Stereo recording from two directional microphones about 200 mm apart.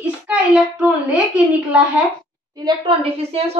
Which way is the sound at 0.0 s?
5° right (ahead or behind).